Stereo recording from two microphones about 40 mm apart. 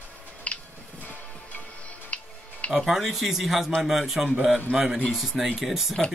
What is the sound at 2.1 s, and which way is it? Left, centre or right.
Music, left.